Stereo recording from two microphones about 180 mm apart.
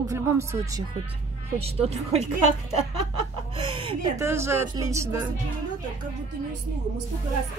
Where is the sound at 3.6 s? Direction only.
30° right (ahead or behind).